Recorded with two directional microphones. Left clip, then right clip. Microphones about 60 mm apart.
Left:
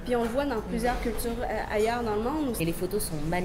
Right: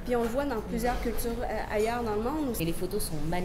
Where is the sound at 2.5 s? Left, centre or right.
Left.